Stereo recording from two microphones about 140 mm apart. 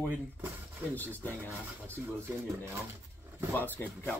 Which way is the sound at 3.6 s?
15° left (ahead or behind).